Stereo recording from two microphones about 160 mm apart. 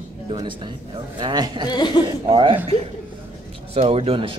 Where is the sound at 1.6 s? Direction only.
25° left (ahead or behind).